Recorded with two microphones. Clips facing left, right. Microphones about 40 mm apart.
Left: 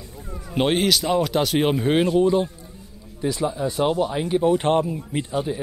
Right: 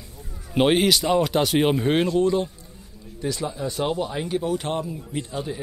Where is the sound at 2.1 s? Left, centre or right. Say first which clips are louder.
Left 2 dB; centre.